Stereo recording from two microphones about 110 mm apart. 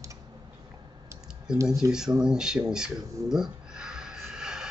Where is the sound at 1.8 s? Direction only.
30° right (ahead or behind).